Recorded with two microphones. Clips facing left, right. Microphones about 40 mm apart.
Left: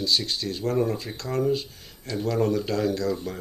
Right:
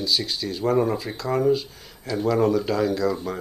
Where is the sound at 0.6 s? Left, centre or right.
Centre.